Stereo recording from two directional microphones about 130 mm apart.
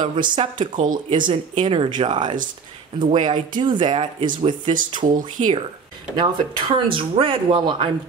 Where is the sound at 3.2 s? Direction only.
35° right (ahead or behind).